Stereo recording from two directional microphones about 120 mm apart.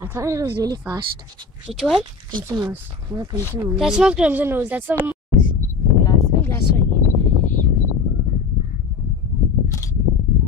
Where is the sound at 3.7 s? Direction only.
5° right (ahead or behind).